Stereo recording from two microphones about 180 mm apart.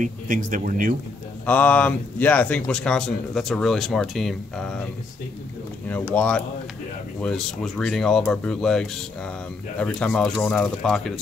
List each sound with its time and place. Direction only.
0.0 s speech: 45° right (ahead or behind)
1.4 s speech: 10° left (ahead or behind)
5.9 s speech: 10° left (ahead or behind)